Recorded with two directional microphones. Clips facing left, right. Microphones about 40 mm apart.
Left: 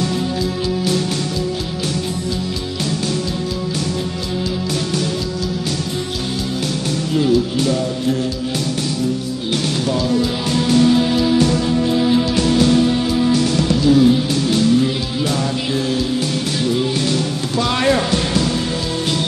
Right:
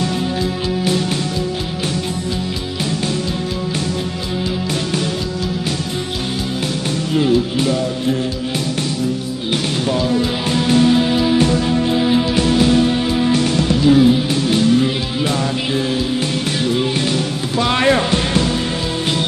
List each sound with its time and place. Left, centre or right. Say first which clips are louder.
7.2 s music: even; right
9.5 s music: right 1 dB; right
13.1 s music: even; right